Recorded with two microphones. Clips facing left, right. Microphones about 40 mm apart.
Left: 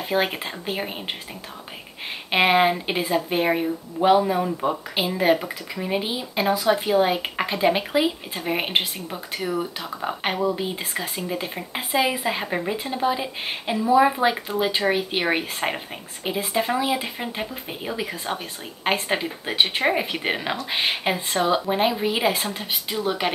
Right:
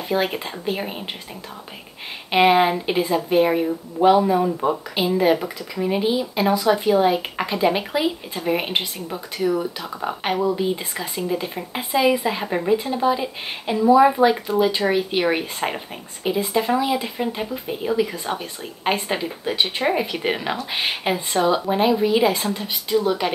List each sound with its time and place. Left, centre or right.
0.1 s speech: centre
2.3 s speech: centre
4.2 s speech: centre
4.9 s a woman's voice: centre